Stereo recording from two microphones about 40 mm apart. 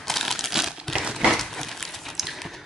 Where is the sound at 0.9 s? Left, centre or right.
Centre.